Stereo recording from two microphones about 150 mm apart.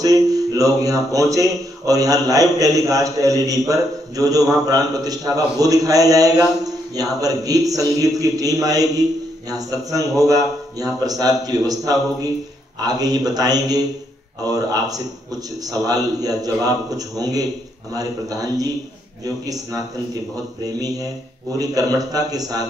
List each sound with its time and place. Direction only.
0.0 s a man's voice: 25° right (ahead or behind)
21.5 s a man's voice: 25° right (ahead or behind)